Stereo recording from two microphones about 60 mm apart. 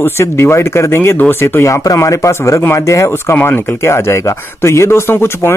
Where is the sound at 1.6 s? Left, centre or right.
Left.